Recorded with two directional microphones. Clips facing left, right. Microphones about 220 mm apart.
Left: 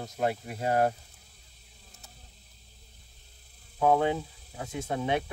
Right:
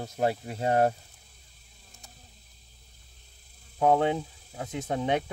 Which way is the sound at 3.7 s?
15° right (ahead or behind).